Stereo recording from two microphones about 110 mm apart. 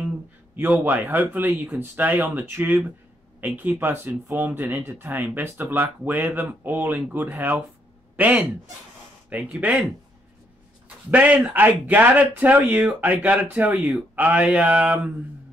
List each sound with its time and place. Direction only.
0.6 s speech: 15° right (ahead or behind)
11.1 s speech: 15° right (ahead or behind)